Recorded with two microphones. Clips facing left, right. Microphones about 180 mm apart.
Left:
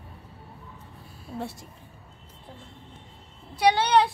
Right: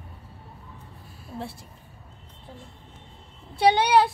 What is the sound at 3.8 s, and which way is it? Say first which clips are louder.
Speech: right 1 dB; 5° right (ahead or behind).